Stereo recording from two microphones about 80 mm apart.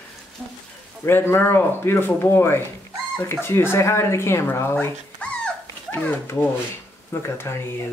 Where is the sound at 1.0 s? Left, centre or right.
Left.